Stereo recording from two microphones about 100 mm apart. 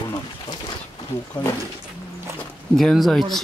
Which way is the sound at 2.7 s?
Centre (ahead or behind).